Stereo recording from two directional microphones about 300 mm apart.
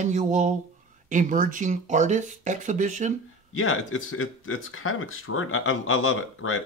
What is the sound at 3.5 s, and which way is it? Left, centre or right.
Speech, left.